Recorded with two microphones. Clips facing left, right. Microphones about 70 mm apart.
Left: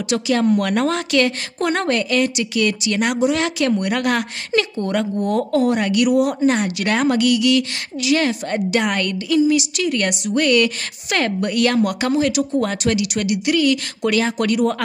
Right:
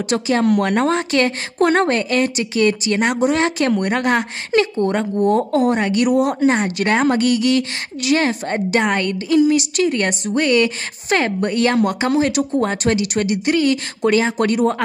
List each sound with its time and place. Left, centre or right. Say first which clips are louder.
0.1 s a woman's voice: right 1 dB; right
9.5 s a woman's voice: right 2 dB; right
12.2 s a woman's voice: even; right
12.5 s a woman's voice: right 1 dB; right